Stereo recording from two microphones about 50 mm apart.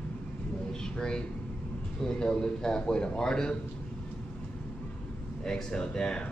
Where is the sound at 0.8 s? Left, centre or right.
Centre.